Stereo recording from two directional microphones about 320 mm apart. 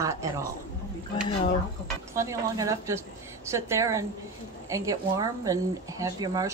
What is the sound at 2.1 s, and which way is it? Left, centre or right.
A woman's voice, centre.